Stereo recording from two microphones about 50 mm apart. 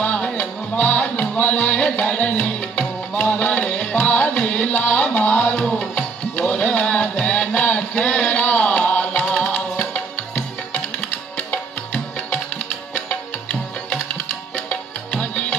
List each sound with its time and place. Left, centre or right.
0.0 s music: left
9.5 s music: left